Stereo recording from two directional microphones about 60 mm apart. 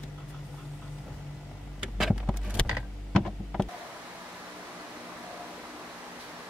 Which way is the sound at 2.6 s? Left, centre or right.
Centre.